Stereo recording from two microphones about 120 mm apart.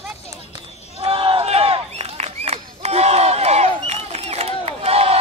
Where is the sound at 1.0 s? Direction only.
50° right (ahead or behind).